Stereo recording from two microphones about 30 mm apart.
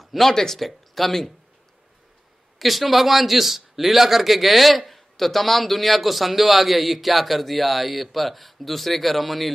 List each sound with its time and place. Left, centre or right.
0.0 s a sound: centre
0.3 s speech: centre
0.6 s speech: centre
2.6 s speech: centre